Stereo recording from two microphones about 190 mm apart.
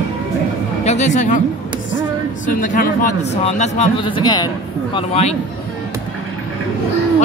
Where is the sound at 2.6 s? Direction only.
45° left (ahead or behind).